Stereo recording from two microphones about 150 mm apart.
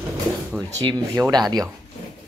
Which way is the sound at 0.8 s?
25° right (ahead or behind).